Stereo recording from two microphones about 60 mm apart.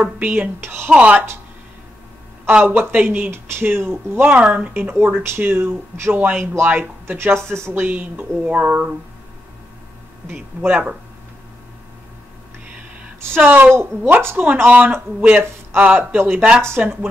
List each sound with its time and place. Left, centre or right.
0.0 s speech: right
0.6 s speech: right
0.8 s speech: right
2.6 s speech: right
4.4 s speech: right
4.8 s speech: right
7.3 s speech: centre
7.6 s speech: right
10.6 s speech: right
13.2 s speech: right
16.2 s speech: right
16.8 s speech: right